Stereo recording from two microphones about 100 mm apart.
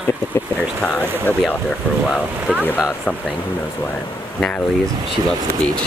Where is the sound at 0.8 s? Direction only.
15° left (ahead or behind).